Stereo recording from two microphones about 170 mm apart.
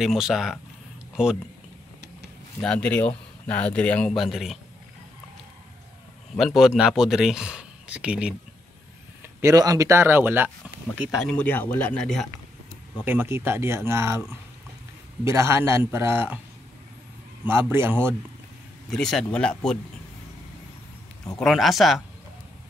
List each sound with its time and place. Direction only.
0.0 s speech: centre (ahead or behind)
2.6 s a man's voice: 5° left (ahead or behind)
6.3 s speech: centre (ahead or behind)
9.4 s speech: 20° right (ahead or behind)
11.0 s a man's voice: centre (ahead or behind)
13.0 s speech: 10° right (ahead or behind)
15.2 s speech: 15° right (ahead or behind)
17.5 s speech: 15° right (ahead or behind)
18.9 s speech: 5° left (ahead or behind)
21.4 s speech: centre (ahead or behind)